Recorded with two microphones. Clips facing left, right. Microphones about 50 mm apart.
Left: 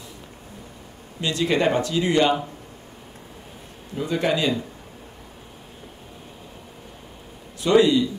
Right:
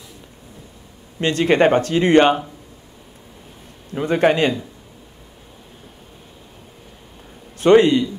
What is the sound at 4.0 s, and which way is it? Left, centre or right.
Speech, right.